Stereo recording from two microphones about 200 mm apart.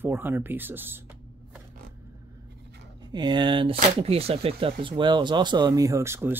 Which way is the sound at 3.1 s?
20° right (ahead or behind).